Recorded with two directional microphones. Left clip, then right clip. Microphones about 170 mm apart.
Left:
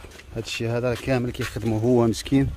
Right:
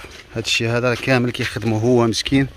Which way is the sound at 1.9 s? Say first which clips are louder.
Right 4 dB; 15° left (ahead or behind).